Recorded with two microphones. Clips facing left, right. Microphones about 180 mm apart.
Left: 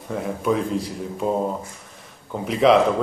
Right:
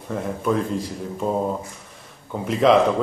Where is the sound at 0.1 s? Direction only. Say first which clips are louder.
Even; centre (ahead or behind).